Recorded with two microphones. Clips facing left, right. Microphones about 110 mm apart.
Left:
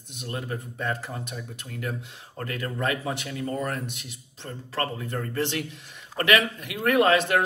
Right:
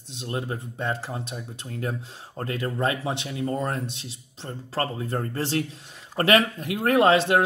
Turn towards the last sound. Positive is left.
turn(degrees=-30)  # may be behind; listen again after turning